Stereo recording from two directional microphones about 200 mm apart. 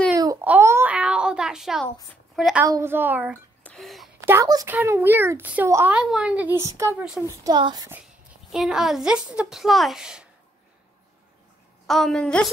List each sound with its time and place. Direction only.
0.1 s wail: 15° right (ahead or behind)
2.3 s a woman's voice: centre (ahead or behind)
2.6 s a child's voice: 15° right (ahead or behind)
3.6 s a sound: centre (ahead or behind)
4.3 s a child's voice: 15° right (ahead or behind)
8.0 s a woman's voice: centre (ahead or behind)
11.8 s a woman's voice: centre (ahead or behind)